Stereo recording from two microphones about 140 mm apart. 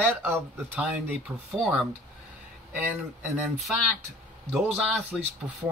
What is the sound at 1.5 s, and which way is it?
Speech, centre (ahead or behind).